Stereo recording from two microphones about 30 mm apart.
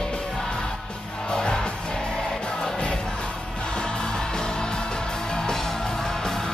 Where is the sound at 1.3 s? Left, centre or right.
Left.